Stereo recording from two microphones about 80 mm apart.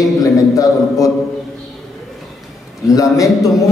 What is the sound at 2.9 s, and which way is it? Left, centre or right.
Speech, left.